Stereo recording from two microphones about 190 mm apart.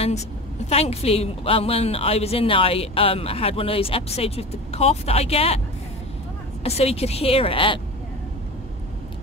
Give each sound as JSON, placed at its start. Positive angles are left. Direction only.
{"t": 0.7, "sound": "a woman's voice", "side_deg": 35}
{"t": 6.6, "sound": "a woman's voice", "side_deg": 35}